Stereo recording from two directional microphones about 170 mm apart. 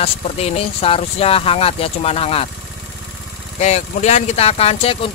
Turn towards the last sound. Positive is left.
turn(degrees=35)  # may be behind; listen again after turning